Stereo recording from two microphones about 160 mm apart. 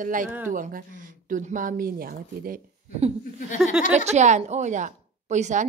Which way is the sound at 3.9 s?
45° right (ahead or behind).